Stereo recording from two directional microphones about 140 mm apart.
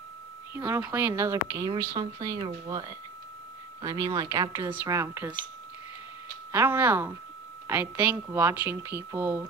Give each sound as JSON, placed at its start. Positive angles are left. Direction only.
{"t": 0.6, "sound": "speech", "side_deg": -15}
{"t": 6.5, "sound": "a woman's voice", "side_deg": -15}